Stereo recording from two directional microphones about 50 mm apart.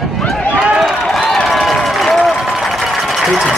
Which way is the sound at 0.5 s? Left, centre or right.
Centre.